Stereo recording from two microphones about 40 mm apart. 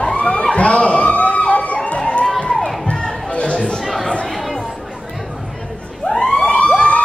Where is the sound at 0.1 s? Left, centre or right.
Left.